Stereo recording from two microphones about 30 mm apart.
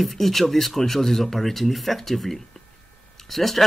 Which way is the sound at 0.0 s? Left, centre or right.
Centre.